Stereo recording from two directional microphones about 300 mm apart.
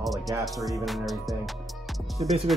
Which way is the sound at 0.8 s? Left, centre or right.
Centre.